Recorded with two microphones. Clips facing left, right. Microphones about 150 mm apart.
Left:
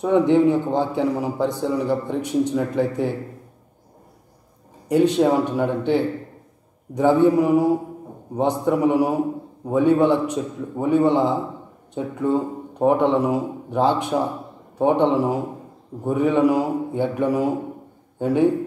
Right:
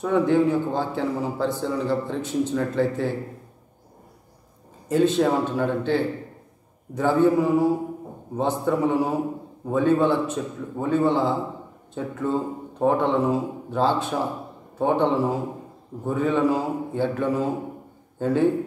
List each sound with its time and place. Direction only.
0.0 s a man's voice: 20° left (ahead or behind)
4.8 s a man's voice: 15° left (ahead or behind)